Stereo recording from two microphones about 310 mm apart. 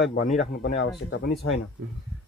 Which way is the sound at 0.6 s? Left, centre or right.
Left.